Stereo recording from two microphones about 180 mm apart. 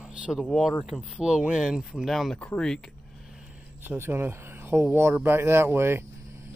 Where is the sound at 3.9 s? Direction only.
15° right (ahead or behind).